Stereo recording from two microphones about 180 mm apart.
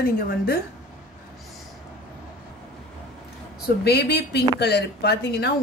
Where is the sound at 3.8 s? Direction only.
65° left (ahead or behind).